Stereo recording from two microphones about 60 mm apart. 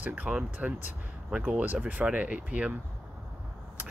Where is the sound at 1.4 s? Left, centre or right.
Right.